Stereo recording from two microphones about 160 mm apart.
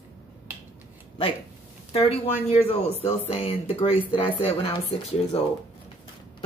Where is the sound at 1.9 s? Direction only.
35° left (ahead or behind).